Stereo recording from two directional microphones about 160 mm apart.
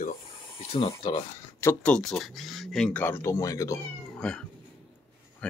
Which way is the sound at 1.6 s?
15° left (ahead or behind).